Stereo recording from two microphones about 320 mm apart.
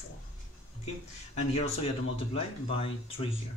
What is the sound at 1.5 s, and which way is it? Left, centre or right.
Speech, centre.